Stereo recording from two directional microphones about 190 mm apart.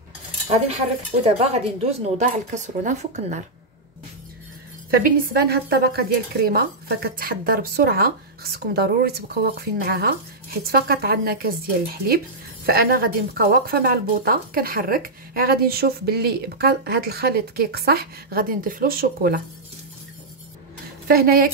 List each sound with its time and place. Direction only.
1.2 s speech: 30° right (ahead or behind)
4.9 s a woman's voice: 50° right (ahead or behind)
12.6 s a woman's voice: 50° right (ahead or behind)
21.1 s a woman's voice: 50° right (ahead or behind)